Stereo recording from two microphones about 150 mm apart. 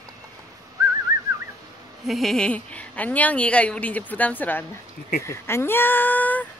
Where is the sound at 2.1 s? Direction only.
Centre (ahead or behind).